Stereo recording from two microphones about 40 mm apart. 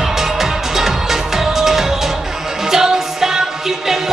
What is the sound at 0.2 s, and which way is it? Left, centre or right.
Music, centre.